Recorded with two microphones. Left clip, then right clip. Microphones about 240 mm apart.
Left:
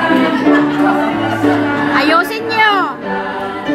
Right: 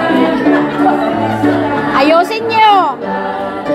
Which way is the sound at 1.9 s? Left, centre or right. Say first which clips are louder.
Right 3 dB; centre.